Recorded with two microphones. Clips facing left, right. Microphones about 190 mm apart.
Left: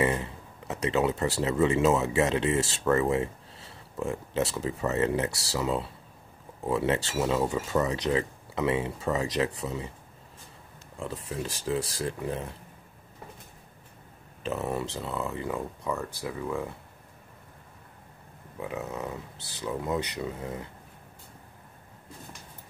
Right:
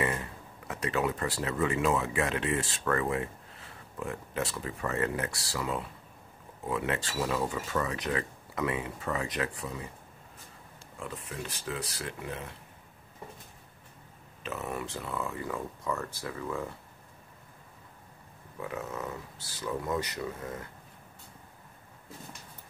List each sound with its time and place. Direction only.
0.0 s speech: 25° left (ahead or behind)
11.0 s speech: 30° left (ahead or behind)
14.4 s speech: 30° left (ahead or behind)
18.6 s speech: 20° left (ahead or behind)